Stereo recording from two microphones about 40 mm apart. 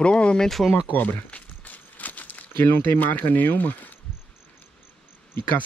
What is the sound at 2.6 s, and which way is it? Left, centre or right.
Speech, left.